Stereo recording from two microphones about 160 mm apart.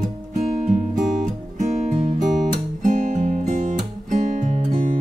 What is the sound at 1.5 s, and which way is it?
Music, 45° right (ahead or behind).